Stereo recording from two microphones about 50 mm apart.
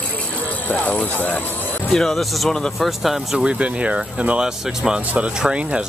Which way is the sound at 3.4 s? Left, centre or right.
Right.